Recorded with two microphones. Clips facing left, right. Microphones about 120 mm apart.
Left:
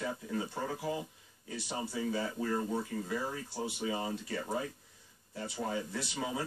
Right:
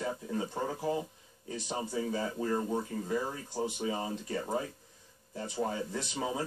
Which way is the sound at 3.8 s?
20° right (ahead or behind).